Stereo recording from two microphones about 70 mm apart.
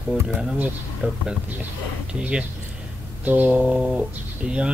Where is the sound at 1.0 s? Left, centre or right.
Centre.